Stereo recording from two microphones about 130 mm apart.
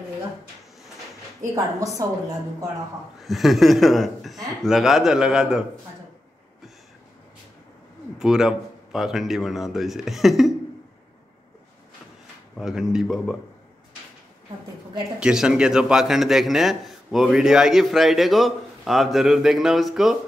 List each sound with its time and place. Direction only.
1.4 s a woman's voice: 25° right (ahead or behind)
3.2 s a man's voice: centre (ahead or behind)
8.2 s a man's voice: 5° right (ahead or behind)
12.5 s a man's voice: 5° right (ahead or behind)
15.1 s a man's voice: 5° right (ahead or behind)